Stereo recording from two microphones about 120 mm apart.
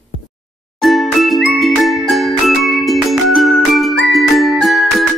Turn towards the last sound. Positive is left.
turn(degrees=0)  # may be behind; listen again after turning